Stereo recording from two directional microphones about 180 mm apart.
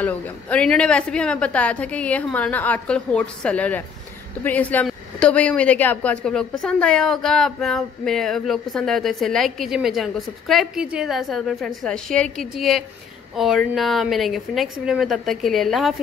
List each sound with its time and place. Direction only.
0.0 s a woman's voice: 10° left (ahead or behind)